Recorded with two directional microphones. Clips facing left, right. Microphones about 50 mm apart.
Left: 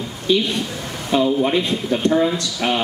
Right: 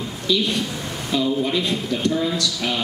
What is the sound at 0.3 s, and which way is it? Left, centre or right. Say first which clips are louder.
Speech: left 3 dB; left.